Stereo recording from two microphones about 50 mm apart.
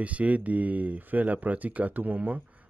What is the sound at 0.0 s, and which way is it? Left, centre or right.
Speech, right.